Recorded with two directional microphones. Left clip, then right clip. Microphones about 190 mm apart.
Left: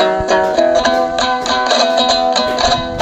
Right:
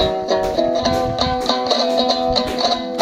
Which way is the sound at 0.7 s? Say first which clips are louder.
Left 5 dB; 55° left (ahead or behind).